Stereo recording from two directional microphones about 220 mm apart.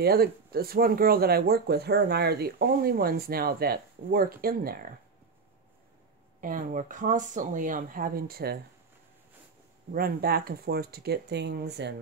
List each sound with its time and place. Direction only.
0.0 s speech: 45° right (ahead or behind)
6.4 s a woman's voice: 35° right (ahead or behind)
9.9 s speech: 45° right (ahead or behind)